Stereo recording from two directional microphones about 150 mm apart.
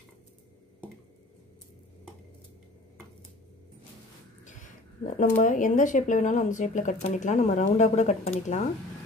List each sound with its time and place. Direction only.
4.5 s speech: 55° left (ahead or behind)